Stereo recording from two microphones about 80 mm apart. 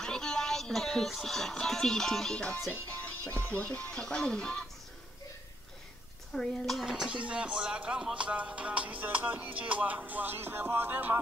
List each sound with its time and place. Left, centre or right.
0.0 s speech: centre
2.7 s music: centre
3.4 s speech: centre
6.3 s speech: centre; by 11.1 s right